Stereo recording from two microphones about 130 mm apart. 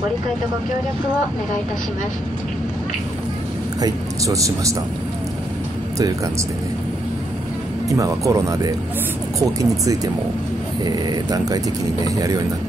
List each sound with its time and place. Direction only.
3.8 s speech: 25° right (ahead or behind)
7.9 s speech: 25° right (ahead or behind)